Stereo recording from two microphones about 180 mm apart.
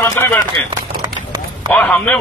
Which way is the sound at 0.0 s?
10° left (ahead or behind).